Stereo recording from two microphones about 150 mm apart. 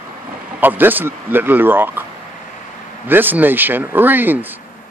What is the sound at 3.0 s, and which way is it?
Speech, 15° right (ahead or behind).